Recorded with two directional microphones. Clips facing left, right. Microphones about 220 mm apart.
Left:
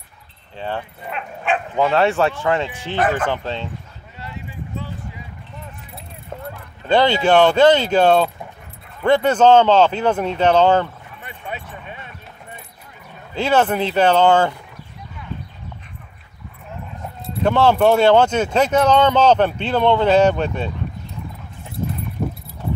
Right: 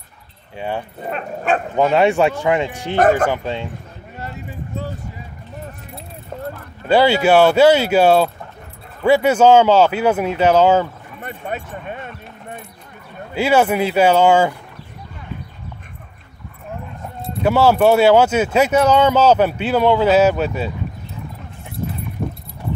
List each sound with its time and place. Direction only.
0.6 s speech: 10° right (ahead or behind)
1.0 s speech: 40° right (ahead or behind)
1.8 s speech: 15° right (ahead or behind)
3.0 s speech: 45° right (ahead or behind)
3.3 s speech: 10° right (ahead or behind)
4.2 s a sound: 45° right (ahead or behind)
6.3 s a sound: centre (ahead or behind)
6.9 s speech: 10° right (ahead or behind)
11.2 s a sound: 45° right (ahead or behind)
13.3 s speech: 10° right (ahead or behind)
17.4 s speech: 5° right (ahead or behind)